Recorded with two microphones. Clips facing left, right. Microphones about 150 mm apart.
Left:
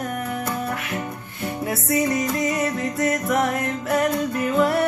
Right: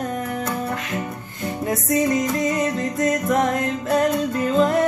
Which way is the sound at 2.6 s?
15° right (ahead or behind).